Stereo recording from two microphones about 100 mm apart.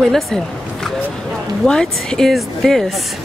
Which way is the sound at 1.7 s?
5° left (ahead or behind).